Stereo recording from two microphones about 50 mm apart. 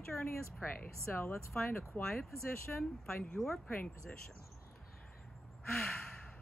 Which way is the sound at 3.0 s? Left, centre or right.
Centre.